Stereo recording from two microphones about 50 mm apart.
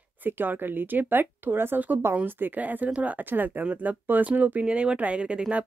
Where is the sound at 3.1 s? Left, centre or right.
Right.